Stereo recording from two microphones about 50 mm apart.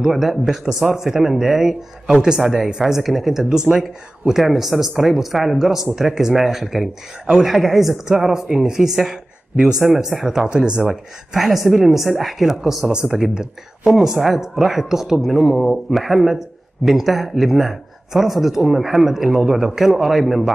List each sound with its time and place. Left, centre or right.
0.0 s a woman's voice: centre
10.5 s speech: centre
10.9 s a woman's voice: centre